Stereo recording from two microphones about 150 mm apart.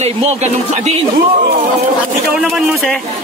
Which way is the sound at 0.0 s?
45° right (ahead or behind).